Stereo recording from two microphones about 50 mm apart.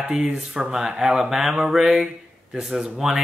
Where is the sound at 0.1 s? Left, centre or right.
Centre.